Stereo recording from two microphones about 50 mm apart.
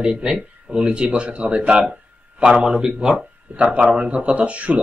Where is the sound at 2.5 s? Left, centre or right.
Centre.